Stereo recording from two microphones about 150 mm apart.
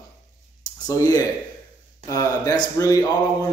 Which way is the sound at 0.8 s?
25° left (ahead or behind).